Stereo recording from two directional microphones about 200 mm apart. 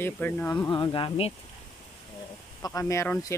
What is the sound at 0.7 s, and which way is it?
Speech, 20° left (ahead or behind).